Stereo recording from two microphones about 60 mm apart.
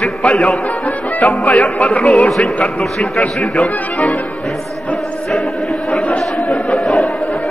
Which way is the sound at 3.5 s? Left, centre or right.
Left.